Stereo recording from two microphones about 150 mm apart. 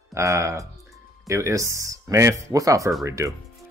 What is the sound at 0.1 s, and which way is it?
Speech, 20° right (ahead or behind).